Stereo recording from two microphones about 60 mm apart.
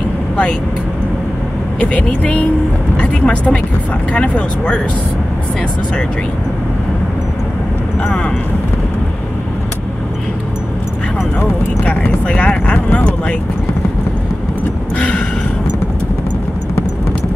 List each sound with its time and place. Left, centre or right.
1.8 s speech: centre
11.8 s speech: left
15.0 s speech: left